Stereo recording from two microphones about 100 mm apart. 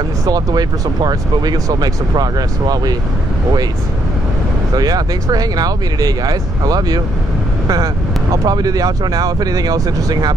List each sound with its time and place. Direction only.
0.2 s speech: 40° right (ahead or behind)
4.7 s speech: 40° right (ahead or behind)